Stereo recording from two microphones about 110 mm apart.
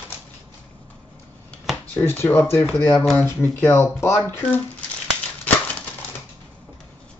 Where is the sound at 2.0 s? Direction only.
15° left (ahead or behind).